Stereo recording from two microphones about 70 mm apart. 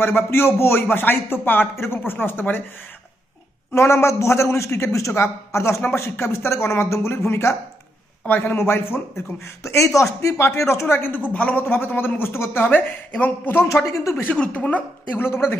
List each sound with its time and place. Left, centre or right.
0.0 s a man's voice: left
3.7 s a man's voice: left
13.7 s a man's voice: left
14.2 s speech: centre